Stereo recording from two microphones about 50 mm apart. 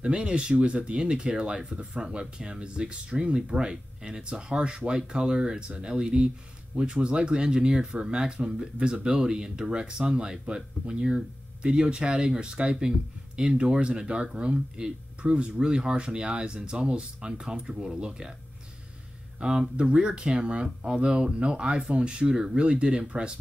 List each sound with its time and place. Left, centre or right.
0.0 s speech: centre
19.4 s speech: centre